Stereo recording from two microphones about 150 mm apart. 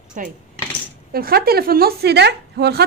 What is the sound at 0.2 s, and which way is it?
Cutlery, 60° right (ahead or behind).